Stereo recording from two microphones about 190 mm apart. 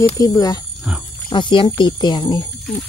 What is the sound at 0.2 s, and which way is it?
Speech, 20° left (ahead or behind).